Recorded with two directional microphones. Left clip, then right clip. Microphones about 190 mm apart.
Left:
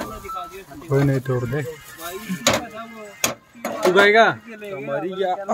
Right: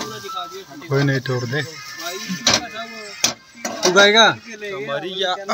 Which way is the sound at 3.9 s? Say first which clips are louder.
Right 2 dB; 35° right (ahead or behind).